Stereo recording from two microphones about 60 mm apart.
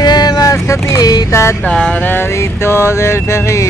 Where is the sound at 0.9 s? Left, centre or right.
Left.